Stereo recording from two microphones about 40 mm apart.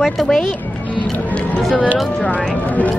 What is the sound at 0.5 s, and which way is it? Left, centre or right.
Speech, left.